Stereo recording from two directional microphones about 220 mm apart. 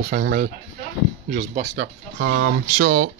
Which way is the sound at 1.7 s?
60° right (ahead or behind).